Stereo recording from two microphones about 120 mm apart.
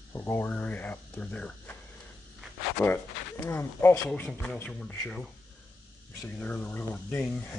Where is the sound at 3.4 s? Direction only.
20° left (ahead or behind).